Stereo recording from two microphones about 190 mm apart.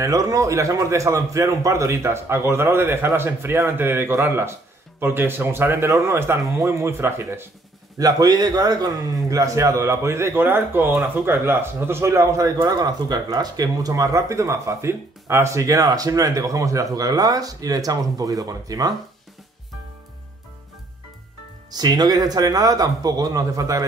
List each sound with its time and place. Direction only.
0.0 s a man's voice: 15° right (ahead or behind)
21.7 s speech: 20° right (ahead or behind)